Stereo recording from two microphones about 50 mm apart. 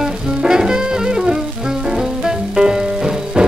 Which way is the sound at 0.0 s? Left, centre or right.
Centre.